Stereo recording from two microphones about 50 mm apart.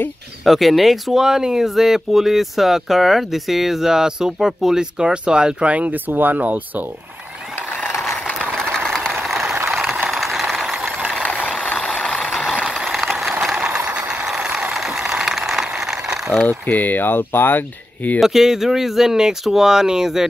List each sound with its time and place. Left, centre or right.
0.5 s speech: centre; by 6.6 s right
8.7 s vehicle: centre
9.1 s vehicle: centre
9.7 s a sound: centre
11.2 s vehicle: left
12.1 s vehicle: centre
13.4 s a sound: centre
13.7 s a sound: right
14.2 s vehicle: centre
16.4 s speech: left
18.2 s speech: centre